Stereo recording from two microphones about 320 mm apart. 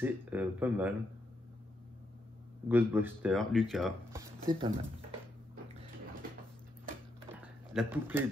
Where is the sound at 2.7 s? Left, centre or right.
Centre.